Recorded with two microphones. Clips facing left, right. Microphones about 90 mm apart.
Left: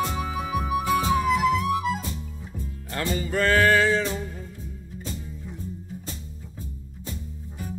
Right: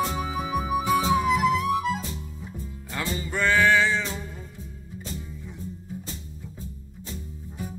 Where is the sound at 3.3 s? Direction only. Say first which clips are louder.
Left 1 dB; 45° left (ahead or behind).